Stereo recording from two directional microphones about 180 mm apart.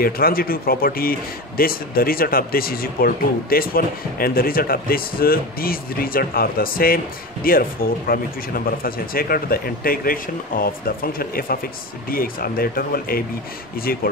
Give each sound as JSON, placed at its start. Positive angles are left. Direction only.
{"t": 0.0, "sound": "speech", "side_deg": 55}